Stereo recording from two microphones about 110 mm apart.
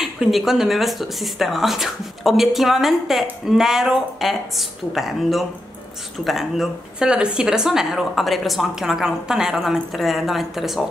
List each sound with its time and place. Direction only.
0.0 s speech: 5° right (ahead or behind)